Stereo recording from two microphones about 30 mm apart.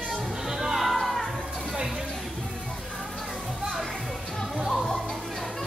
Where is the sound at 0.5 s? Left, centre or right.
Centre.